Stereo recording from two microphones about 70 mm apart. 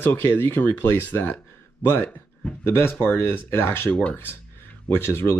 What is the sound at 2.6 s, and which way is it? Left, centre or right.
Speech, left.